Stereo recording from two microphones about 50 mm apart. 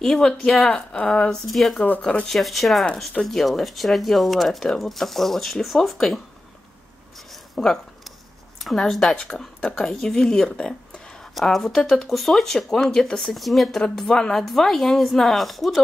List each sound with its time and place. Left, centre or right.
0.0 s speech: centre
1.5 s speech: centre
2.0 s speech: left
2.2 s speech: centre
7.5 s speech: centre